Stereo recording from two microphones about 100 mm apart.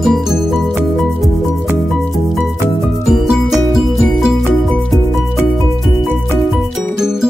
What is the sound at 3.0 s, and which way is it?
Music, 5° right (ahead or behind).